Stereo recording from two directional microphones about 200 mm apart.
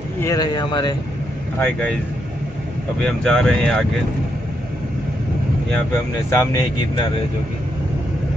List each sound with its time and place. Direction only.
0.2 s speech: 20° left (ahead or behind)
1.6 s speech: 5° left (ahead or behind)
3.0 s speech: centre (ahead or behind)
6.3 s speech: 15° left (ahead or behind)